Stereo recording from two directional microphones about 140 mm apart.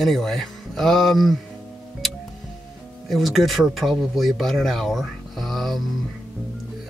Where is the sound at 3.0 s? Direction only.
Centre (ahead or behind).